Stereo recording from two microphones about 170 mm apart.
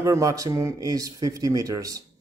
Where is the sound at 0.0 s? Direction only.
20° right (ahead or behind).